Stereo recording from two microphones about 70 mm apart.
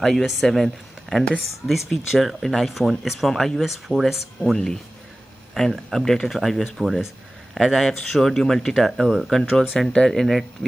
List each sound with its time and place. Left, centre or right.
0.0 s speech: centre
1.7 s speech: centre
4.5 s speech: centre